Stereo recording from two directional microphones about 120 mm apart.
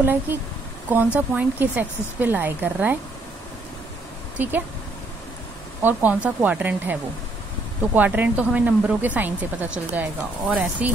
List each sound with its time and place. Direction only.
0.0 s speech: 15° right (ahead or behind)
4.4 s speech: 15° right (ahead or behind)
5.8 s speech: 15° right (ahead or behind)